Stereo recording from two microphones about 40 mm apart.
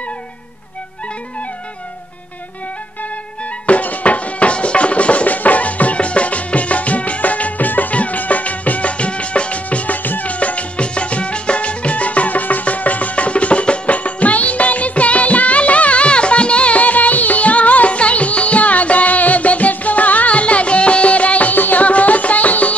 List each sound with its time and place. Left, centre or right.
3.6 s music: left